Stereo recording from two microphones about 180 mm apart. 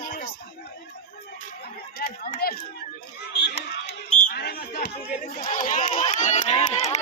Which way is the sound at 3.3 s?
70° left (ahead or behind).